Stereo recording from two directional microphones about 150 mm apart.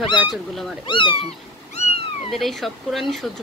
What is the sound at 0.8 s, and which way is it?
Speech, 35° left (ahead or behind).